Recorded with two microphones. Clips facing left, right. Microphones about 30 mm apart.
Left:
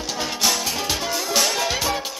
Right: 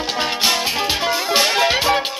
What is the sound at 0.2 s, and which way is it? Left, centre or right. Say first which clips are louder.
Music: right 4 dB; right.